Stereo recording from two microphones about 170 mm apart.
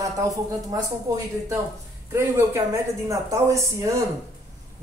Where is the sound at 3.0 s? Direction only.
20° right (ahead or behind).